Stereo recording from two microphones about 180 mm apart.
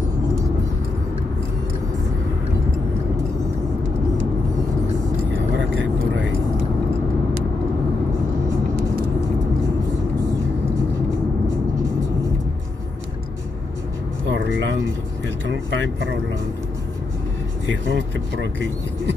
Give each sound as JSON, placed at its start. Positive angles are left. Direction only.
{"t": 14.2, "sound": "music", "side_deg": -80}
{"t": 15.2, "sound": "speech", "side_deg": -90}
{"t": 17.8, "sound": "speech", "side_deg": -85}